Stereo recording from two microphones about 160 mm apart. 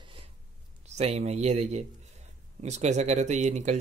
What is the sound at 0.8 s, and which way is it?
Speech, 45° right (ahead or behind).